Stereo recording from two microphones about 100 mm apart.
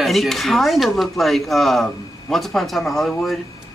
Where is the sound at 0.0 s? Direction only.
Centre (ahead or behind).